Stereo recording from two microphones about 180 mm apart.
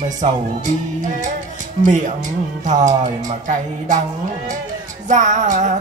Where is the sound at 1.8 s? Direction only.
45° right (ahead or behind).